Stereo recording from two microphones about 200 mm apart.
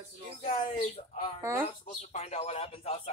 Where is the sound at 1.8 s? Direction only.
35° left (ahead or behind).